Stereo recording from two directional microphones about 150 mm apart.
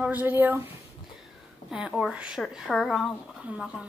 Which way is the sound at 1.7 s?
5° right (ahead or behind).